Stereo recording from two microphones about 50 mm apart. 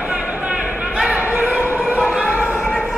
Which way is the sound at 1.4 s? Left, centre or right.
Right.